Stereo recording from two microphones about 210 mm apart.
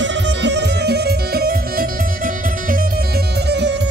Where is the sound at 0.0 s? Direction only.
55° right (ahead or behind).